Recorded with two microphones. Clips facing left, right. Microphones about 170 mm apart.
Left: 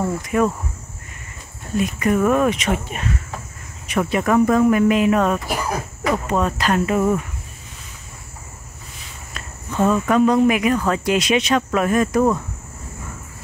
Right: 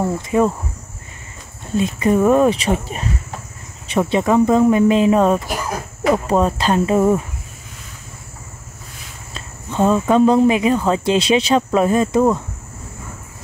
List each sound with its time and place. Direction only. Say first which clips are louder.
0.0 s speech: right 3 dB; 20° right (ahead or behind)
1.8 s speech: right 3 dB; 25° right (ahead or behind)
9.3 s speech: right 2 dB; 25° right (ahead or behind)